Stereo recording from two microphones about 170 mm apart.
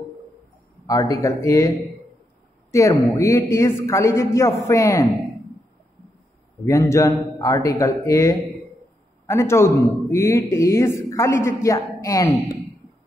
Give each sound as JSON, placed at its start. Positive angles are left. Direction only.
{"t": 0.8, "sound": "a man's voice", "side_deg": 20}
{"t": 2.7, "sound": "a man's voice", "side_deg": 15}
{"t": 6.6, "sound": "a man's voice", "side_deg": 15}